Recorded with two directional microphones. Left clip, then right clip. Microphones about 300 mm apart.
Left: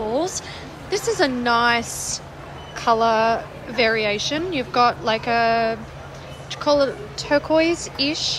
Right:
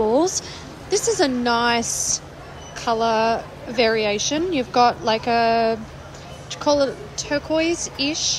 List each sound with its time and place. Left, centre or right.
0.1 s a woman's voice: centre